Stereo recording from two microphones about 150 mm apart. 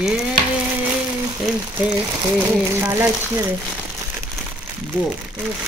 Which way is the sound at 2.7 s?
20° right (ahead or behind).